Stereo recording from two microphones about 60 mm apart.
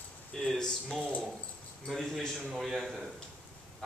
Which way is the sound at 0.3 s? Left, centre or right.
Centre.